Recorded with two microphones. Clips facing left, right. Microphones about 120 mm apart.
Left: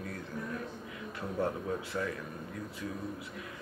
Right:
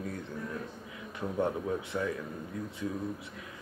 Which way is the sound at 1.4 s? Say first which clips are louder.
Right 2 dB; 20° right (ahead or behind).